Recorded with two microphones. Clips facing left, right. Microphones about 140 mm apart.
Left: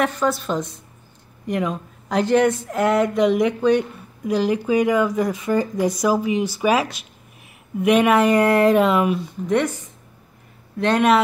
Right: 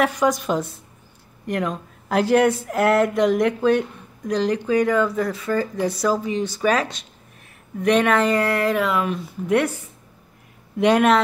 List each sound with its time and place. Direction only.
0.0 s speech: 15° right (ahead or behind)
1.4 s speech: centre (ahead or behind); by 9.1 s 20° left (ahead or behind)
9.5 s speech: 10° right (ahead or behind)